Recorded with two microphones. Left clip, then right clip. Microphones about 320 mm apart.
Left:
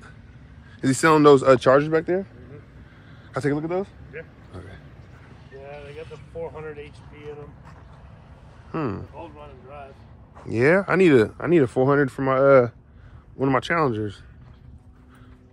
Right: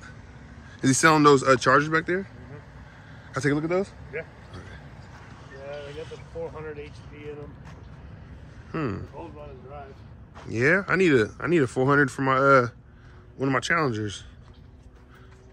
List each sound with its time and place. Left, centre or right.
0.7 s a man's voice: centre
4.1 s speech: centre
6.4 s vehicle: left
8.7 s speech: centre
9.2 s a sound: left
10.5 s speech: centre